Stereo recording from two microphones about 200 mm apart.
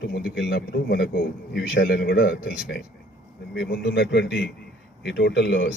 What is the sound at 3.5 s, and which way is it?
A man's voice, 55° left (ahead or behind).